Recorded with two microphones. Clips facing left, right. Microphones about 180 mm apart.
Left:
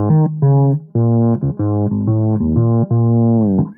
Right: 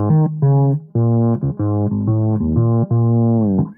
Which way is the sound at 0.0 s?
45° left (ahead or behind).